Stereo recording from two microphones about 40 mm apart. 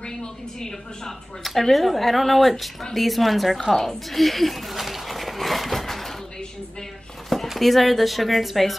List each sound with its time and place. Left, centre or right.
0.0 s a woman's voice: centre
1.4 s speech: centre
4.1 s a sound: centre
7.2 s speech: centre